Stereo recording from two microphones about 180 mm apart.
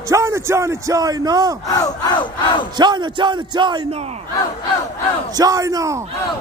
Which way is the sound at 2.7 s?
25° right (ahead or behind).